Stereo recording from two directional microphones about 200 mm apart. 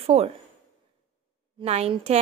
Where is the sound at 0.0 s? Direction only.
35° right (ahead or behind).